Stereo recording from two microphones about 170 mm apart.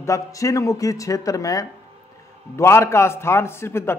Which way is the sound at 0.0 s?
20° left (ahead or behind).